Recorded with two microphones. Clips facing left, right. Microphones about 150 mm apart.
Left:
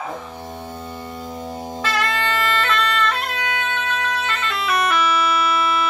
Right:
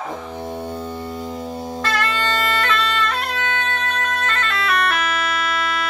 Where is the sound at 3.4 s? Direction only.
10° left (ahead or behind).